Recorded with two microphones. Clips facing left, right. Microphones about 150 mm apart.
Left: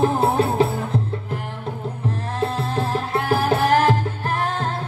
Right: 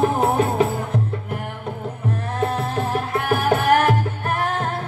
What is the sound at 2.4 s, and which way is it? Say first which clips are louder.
Music: even; 30° left (ahead or behind).